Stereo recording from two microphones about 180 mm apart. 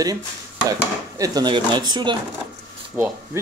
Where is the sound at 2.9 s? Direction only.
10° right (ahead or behind).